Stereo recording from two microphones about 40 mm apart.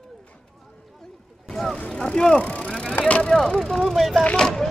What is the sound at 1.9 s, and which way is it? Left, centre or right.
Vehicle, centre.